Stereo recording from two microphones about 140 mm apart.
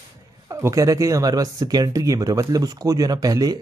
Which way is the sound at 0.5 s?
20° right (ahead or behind).